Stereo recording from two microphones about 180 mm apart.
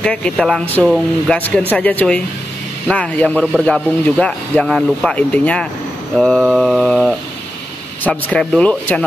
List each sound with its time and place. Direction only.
0.0 s speech: 5° left (ahead or behind)